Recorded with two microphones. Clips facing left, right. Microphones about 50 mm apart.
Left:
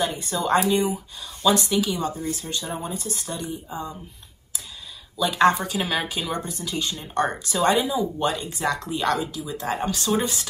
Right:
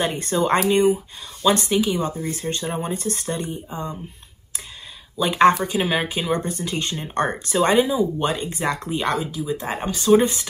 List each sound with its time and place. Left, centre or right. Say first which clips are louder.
0.0 s speech: right 4 dB; right
2.7 s speech: right 4 dB; right
5.1 s speech: right 3 dB; right